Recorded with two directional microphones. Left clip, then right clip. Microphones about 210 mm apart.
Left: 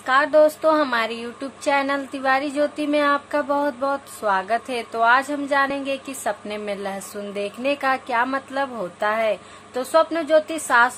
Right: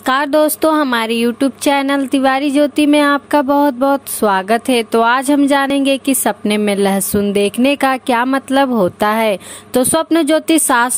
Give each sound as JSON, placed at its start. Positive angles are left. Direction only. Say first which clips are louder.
{"t": 0.0, "sound": "speech", "louder": "right 3 dB", "side_deg": -45}